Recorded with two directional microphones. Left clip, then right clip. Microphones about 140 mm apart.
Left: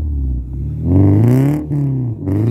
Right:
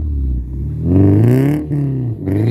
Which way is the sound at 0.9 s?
60° left (ahead or behind).